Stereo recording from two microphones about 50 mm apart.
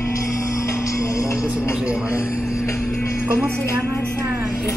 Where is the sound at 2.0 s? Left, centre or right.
Left.